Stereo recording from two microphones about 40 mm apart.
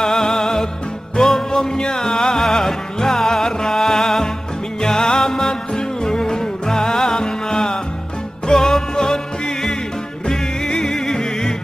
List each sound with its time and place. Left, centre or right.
0.0 s music: centre